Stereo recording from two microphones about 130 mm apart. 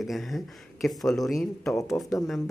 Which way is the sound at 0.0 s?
Centre (ahead or behind).